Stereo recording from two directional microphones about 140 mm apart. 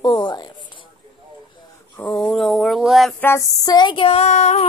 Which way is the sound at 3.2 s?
20° left (ahead or behind).